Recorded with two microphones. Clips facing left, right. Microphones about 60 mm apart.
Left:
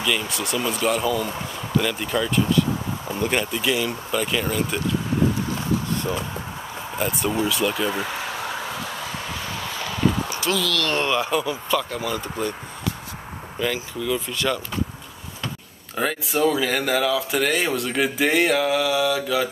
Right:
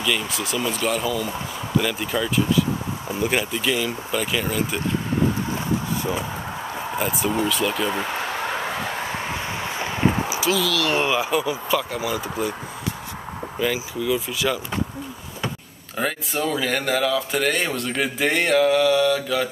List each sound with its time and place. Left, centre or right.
0.0 s speech: centre
7.0 s speech: centre
7.9 s a sound: right
10.3 s speech: centre
13.6 s speech: centre
16.0 s speech: centre